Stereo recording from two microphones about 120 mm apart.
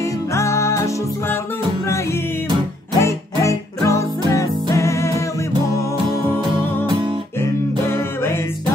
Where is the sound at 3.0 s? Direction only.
25° left (ahead or behind).